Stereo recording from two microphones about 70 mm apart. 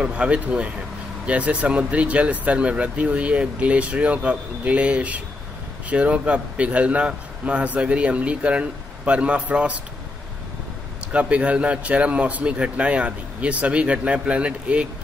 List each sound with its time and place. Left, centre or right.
0.0 s speech: centre
11.1 s speech: centre